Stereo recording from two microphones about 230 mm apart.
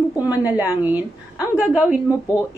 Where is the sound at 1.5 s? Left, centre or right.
Centre.